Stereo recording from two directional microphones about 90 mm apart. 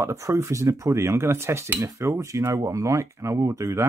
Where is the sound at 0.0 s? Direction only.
35° right (ahead or behind).